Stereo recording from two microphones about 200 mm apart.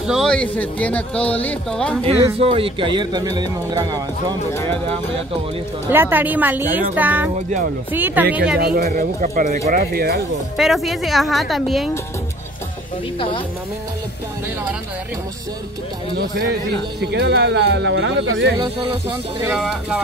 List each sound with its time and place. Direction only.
0.0 s speech: centre (ahead or behind)
2.3 s speech: 30° right (ahead or behind)
5.9 s speech: 10° right (ahead or behind)
8.5 s speech: 50° right (ahead or behind)
10.6 s a woman's voice: centre (ahead or behind)
17.0 s speech: 55° right (ahead or behind)
19.4 s a woman's voice: centre (ahead or behind)